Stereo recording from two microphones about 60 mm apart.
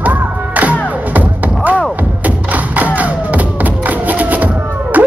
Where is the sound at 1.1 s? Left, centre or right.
Right.